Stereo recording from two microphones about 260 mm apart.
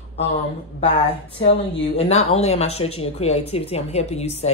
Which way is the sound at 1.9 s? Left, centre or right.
Left.